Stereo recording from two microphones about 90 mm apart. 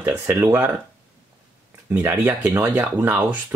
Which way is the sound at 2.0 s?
25° right (ahead or behind).